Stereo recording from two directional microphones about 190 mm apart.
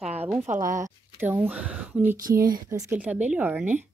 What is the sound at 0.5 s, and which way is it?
Speech, 45° right (ahead or behind).